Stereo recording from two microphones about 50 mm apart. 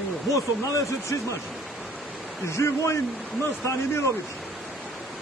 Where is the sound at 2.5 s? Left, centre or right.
Left.